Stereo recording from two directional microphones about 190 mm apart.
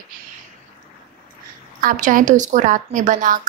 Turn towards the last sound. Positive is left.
turn(degrees=-45)  # may be behind; listen again after turning